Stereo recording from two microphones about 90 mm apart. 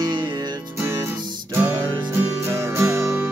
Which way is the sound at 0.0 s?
55° right (ahead or behind).